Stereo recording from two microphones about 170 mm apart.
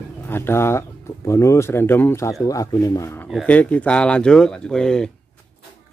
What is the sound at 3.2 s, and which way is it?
Speech, 5° left (ahead or behind).